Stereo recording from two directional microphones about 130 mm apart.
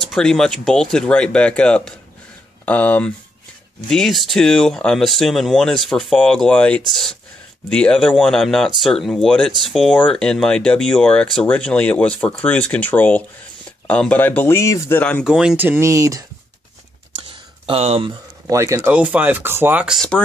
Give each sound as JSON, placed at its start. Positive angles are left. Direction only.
{"t": 0.0, "sound": "speech", "side_deg": 5}
{"t": 15.2, "sound": "speech", "side_deg": -5}
{"t": 17.2, "sound": "a sound", "side_deg": -45}
{"t": 18.5, "sound": "speech", "side_deg": -25}
{"t": 18.9, "sound": "speech", "side_deg": -10}